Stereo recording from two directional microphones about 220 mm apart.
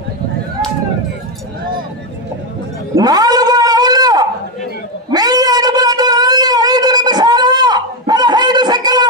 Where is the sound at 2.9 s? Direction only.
15° right (ahead or behind).